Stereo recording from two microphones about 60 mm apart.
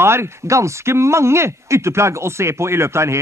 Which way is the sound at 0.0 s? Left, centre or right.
Right.